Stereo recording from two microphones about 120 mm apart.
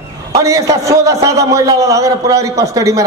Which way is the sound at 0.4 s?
25° right (ahead or behind).